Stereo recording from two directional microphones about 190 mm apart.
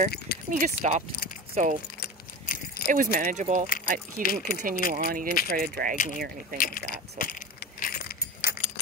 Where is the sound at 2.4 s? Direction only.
45° left (ahead or behind).